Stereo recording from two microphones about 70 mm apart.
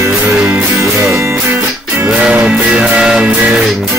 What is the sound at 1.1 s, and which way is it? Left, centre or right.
Music, right.